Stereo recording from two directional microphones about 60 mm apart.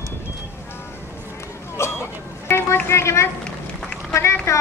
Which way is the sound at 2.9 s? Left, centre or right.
Left.